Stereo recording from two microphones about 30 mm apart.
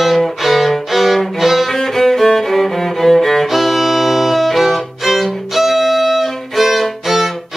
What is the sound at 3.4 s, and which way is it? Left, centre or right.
Music, centre.